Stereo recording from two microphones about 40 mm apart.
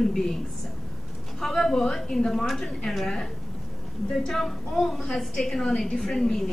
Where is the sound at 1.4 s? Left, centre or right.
Centre.